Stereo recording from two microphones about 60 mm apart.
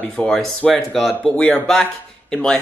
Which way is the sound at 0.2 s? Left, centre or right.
Left.